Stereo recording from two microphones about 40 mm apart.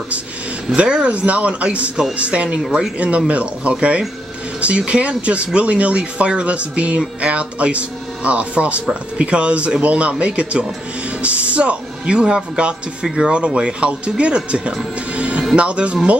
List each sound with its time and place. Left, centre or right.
0.7 s speech: right
13.0 s speech: centre
13.6 s speech: right